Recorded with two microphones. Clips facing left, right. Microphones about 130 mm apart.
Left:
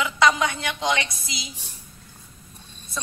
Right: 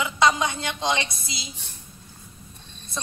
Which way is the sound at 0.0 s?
25° right (ahead or behind).